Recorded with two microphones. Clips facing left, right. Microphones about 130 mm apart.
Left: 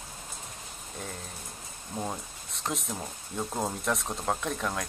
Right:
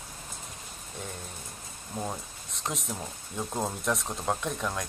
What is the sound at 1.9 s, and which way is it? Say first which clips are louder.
Speech: even; 5° left (ahead or behind).